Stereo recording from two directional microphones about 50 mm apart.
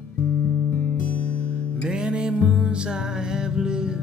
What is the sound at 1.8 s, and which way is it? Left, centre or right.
Music, centre.